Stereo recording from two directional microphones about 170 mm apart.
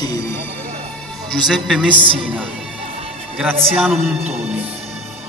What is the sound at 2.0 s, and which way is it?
Speech, 30° right (ahead or behind).